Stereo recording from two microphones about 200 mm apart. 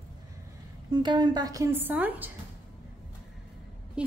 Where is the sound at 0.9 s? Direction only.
20° right (ahead or behind).